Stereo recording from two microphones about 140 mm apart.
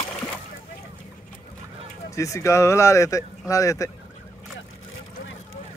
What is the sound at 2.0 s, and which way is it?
Speech, 20° left (ahead or behind).